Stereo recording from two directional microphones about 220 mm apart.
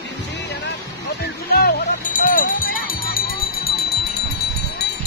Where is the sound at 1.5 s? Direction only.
45° left (ahead or behind).